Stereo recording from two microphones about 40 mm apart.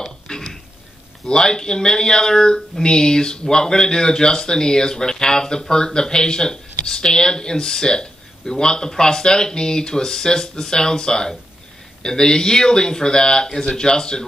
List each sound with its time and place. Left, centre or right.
0.3 s burping: centre
1.2 s speech: centre